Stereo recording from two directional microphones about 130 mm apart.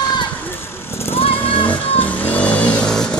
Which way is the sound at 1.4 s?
40° left (ahead or behind).